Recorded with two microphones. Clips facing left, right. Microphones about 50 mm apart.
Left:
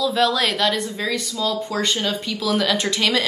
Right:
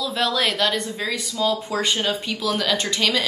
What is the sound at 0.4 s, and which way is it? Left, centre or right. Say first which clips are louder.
Speech: left 1 dB; centre.